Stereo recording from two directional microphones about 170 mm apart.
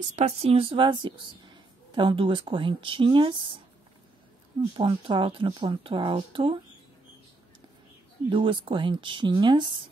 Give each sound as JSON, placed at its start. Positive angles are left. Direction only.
{"t": 0.1, "sound": "speech", "side_deg": -40}
{"t": 4.7, "sound": "speech", "side_deg": -30}
{"t": 8.3, "sound": "speech", "side_deg": -30}